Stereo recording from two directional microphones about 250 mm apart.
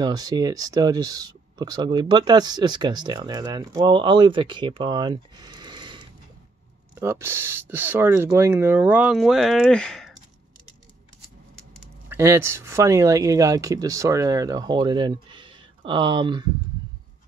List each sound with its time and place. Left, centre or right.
0.0 s speech: centre
12.1 s speech: centre